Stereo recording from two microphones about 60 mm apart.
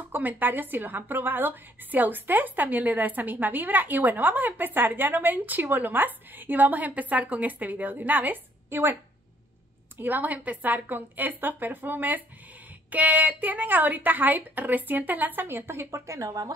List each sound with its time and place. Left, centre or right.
0.1 s a woman's voice: right
9.9 s a woman's voice: right
15.4 s speech: right